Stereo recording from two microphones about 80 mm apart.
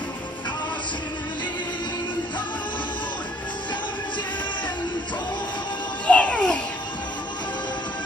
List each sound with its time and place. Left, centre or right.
6.0 s music: centre